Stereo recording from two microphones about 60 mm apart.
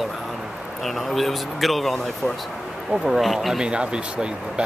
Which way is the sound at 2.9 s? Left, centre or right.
Centre.